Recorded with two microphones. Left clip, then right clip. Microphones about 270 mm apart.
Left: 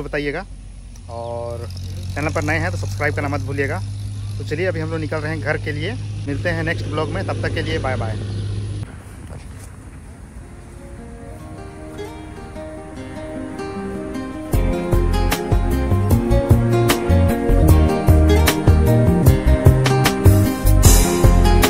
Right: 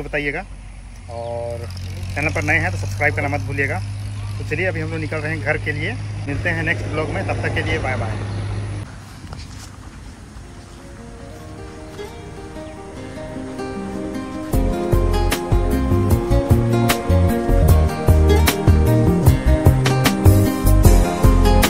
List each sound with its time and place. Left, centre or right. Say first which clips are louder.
0.1 s speech: right 1 dB; centre
1.2 s speech: right 1 dB; centre
2.1 s speech: right 2 dB; centre
13.6 s music: right 2 dB; centre